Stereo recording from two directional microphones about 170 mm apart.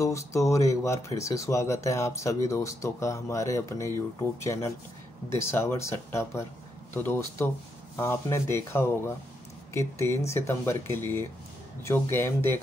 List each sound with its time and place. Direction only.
0.0 s speech: 15° left (ahead or behind)